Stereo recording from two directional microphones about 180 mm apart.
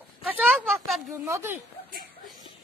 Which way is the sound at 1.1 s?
15° right (ahead or behind).